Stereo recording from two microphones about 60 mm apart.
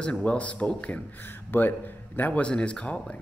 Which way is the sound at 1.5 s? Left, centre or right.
Left.